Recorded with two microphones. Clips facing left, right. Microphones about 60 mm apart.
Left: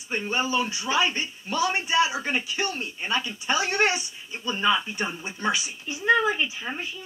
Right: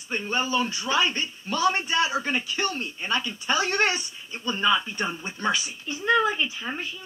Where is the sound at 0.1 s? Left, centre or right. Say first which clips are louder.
Even; left.